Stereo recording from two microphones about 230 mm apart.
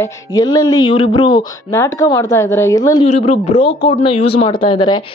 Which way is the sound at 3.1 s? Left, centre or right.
Left.